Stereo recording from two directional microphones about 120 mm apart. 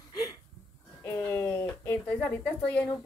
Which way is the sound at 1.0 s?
20° left (ahead or behind).